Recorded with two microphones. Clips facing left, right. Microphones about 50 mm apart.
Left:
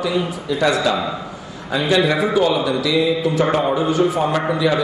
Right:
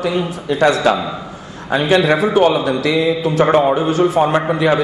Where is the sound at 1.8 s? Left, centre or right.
Right.